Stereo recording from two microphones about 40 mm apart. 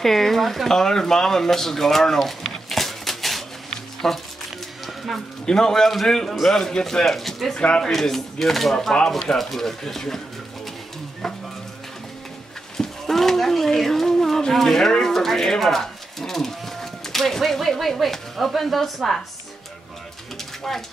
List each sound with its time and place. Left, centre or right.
0.0 s speech: centre
3.7 s music: centre
5.4 s speech: centre
7.5 s speech: left
7.8 s speech: centre
11.2 s a sound: centre
12.7 s a sound: centre
14.5 s speech: centre